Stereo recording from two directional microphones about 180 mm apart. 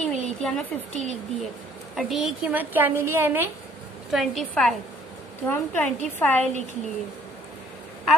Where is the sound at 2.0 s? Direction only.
Centre (ahead or behind).